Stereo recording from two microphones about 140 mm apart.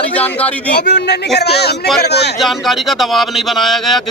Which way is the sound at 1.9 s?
Centre (ahead or behind).